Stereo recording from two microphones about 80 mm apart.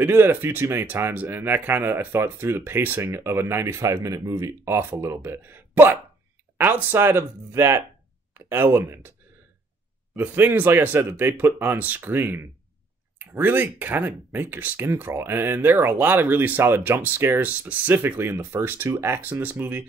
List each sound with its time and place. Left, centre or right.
0.0 s speech: right
10.1 s speech: right